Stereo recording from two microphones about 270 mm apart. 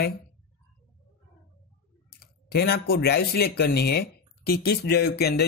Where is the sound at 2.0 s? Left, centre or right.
Left.